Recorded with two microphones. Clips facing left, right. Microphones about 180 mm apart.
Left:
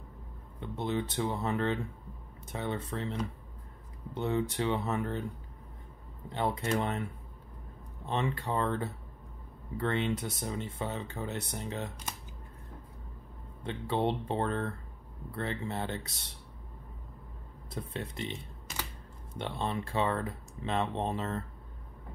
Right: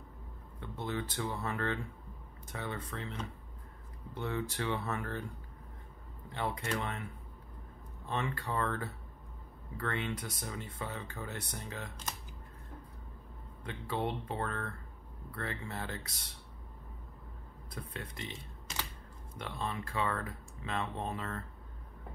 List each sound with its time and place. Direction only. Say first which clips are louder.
0.6 s speech: left 5 dB; 20° left (ahead or behind)
6.3 s speech: left 5 dB; 25° left (ahead or behind)
8.1 s speech: left 4 dB; 20° left (ahead or behind)
13.7 s speech: left 5 dB; 25° left (ahead or behind)
17.6 s speech: left 6 dB; 25° left (ahead or behind)